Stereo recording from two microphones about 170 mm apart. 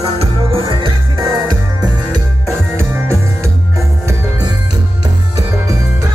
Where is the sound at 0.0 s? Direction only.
35° right (ahead or behind).